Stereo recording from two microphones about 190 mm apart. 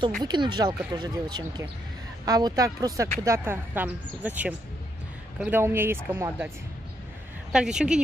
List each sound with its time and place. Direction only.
0.2 s speech: 25° right (ahead or behind)
7.5 s speech: 5° right (ahead or behind)